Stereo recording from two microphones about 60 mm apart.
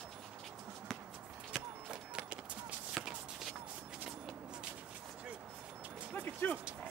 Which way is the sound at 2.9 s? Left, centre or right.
Centre.